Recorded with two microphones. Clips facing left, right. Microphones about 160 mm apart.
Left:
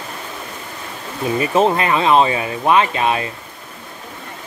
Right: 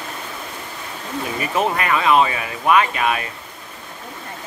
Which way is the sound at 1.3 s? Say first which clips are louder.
Left 6 dB; 25° left (ahead or behind).